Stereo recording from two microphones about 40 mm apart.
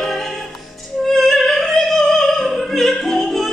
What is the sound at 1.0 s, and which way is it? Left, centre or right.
Opera, centre.